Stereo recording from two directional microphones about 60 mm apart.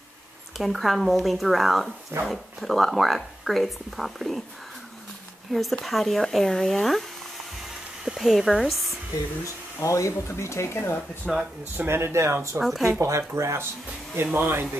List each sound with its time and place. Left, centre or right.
0.6 s speech: centre
5.5 s speech: centre
8.0 s speech: centre
9.4 s speech: left
11.3 s speech: centre
11.7 s speech: right
12.5 s speech: centre
13.3 s speech: right
14.1 s speech: right